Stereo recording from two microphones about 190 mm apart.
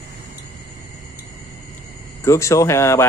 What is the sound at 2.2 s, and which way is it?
Speech, 15° left (ahead or behind).